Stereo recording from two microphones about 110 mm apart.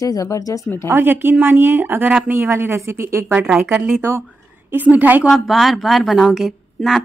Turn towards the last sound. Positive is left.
turn(degrees=-5)  # may be behind; listen again after turning